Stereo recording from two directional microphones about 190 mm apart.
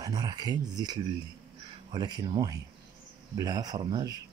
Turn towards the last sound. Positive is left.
turn(degrees=-20)  # may be behind; listen again after turning